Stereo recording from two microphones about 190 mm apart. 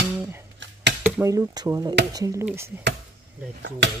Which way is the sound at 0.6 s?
75° right (ahead or behind).